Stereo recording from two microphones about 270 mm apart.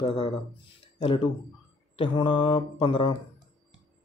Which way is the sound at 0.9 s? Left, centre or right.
Centre.